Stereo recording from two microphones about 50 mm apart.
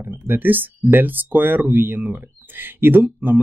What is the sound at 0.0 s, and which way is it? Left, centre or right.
Speech, right.